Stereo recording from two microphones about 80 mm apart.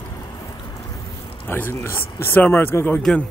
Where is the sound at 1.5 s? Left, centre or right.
Left.